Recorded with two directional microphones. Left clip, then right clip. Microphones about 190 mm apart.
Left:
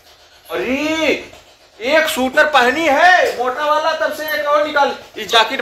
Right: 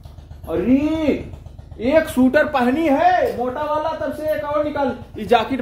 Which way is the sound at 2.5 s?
10° left (ahead or behind).